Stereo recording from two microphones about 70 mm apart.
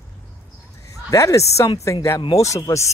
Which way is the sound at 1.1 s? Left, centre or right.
Left.